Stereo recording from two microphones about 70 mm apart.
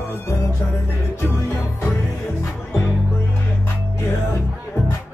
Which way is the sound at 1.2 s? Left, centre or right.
Left.